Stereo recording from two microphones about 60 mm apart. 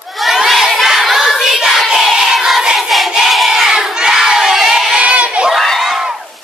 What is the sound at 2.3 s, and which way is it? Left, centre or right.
Music, centre.